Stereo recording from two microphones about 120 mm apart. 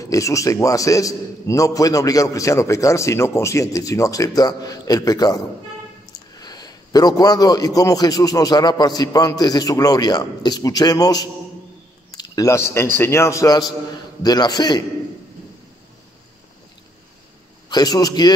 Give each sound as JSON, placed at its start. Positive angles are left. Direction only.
{"t": 0.0, "sound": "a man's voice", "side_deg": 25}
{"t": 17.6, "sound": "a man's voice", "side_deg": 35}